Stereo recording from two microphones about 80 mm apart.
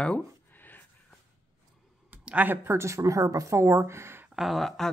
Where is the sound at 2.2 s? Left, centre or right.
Centre; by 4.2 s right.